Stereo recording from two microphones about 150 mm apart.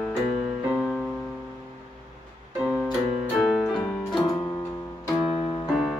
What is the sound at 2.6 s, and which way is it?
Keyboard, 5° right (ahead or behind).